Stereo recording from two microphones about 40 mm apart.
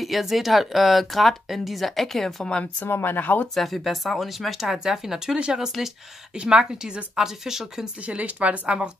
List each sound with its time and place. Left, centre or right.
0.0 s speech: centre
2.9 s speech: left
3.2 s speech: left
3.5 s a woman's voice: centre
8.1 s a woman's voice: right
8.6 s a woman's voice: right